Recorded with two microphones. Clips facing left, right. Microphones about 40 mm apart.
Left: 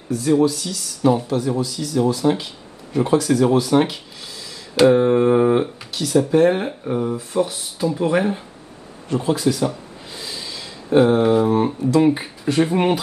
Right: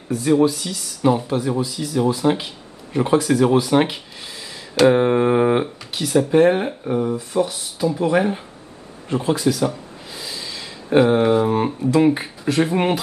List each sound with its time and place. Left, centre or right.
0.3 s speech: right
5.9 s a sound: right
6.1 s speech: centre
9.3 s speech: centre
10.1 s snort: centre
10.9 s speech: right; by 13.0 s centre